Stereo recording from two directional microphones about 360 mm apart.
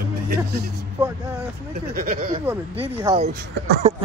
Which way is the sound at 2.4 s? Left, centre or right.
Centre.